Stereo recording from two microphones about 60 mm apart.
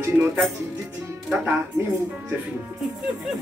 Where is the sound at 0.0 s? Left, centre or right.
Right.